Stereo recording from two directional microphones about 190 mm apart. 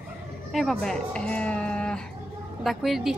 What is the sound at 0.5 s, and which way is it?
A woman's voice, centre (ahead or behind).